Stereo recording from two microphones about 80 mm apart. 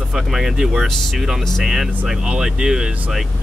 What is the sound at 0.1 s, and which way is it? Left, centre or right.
Speech, centre.